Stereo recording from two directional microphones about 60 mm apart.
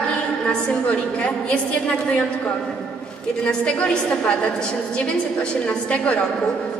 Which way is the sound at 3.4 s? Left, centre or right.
Centre.